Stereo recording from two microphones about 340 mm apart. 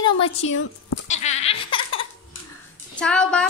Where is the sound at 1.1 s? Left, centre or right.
Centre.